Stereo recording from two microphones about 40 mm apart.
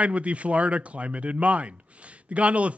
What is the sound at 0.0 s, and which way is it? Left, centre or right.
A man's voice, right.